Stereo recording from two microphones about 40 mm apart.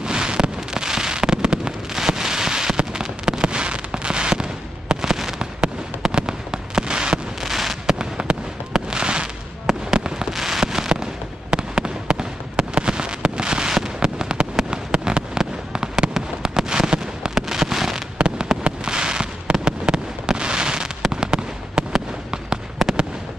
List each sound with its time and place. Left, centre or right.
0.0 s fireworks: right
6.1 s fireworks: centre
7.4 s fireworks: centre
10.3 s rain: centre
11.5 s fireworks: right
18.6 s fireworks: right
22.8 s fireworks: centre